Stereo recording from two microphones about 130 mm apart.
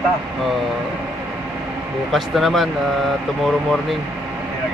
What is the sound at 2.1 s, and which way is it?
Vehicle, centre (ahead or behind).